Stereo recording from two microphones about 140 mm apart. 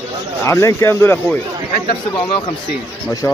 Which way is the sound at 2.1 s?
40° left (ahead or behind).